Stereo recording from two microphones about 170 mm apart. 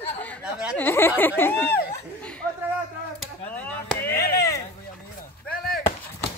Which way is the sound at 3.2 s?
10° left (ahead or behind).